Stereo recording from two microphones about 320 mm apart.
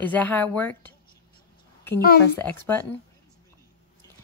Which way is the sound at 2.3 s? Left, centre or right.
Centre.